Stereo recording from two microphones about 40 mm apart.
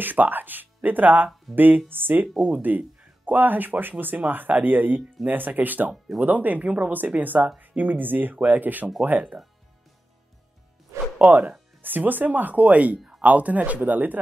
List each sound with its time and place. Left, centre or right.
0.0 s speech: right
2.4 s speech: right
11.1 s speech: right